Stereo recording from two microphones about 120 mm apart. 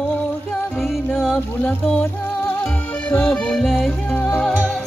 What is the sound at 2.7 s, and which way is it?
Music, 15° left (ahead or behind).